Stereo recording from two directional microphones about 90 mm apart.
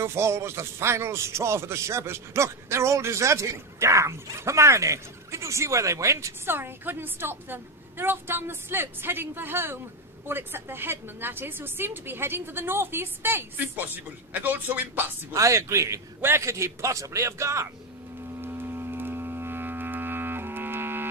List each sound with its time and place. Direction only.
0.0 s a man's voice: 30° right (ahead or behind)
15.3 s a man's voice: 35° right (ahead or behind)
18.4 s music: 25° right (ahead or behind)